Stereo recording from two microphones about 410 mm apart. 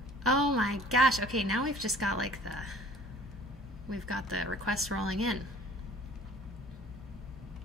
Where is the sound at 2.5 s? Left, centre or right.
Centre.